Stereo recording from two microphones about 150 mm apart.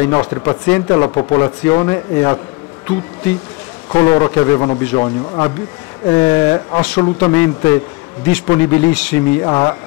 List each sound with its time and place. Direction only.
0.0 s speech: 25° left (ahead or behind)
3.9 s speech: 25° left (ahead or behind)
9.4 s speech: 25° left (ahead or behind)